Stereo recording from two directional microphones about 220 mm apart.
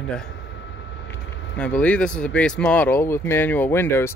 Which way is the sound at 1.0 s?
55° left (ahead or behind).